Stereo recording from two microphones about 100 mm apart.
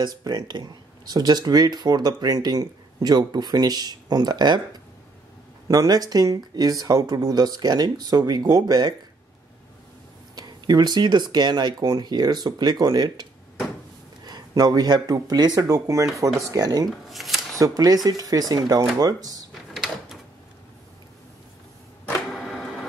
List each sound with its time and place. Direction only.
0.0 s speech: 40° right (ahead or behind)
10.3 s speech: 40° right (ahead or behind)
17.1 s shuffling cards: centre (ahead or behind)
17.6 s speech: 40° right (ahead or behind)
19.5 s a sound: centre (ahead or behind)
22.3 s printer: centre (ahead or behind)